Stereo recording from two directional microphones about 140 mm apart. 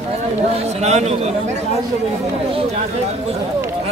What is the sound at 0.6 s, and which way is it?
Speech, 50° right (ahead or behind).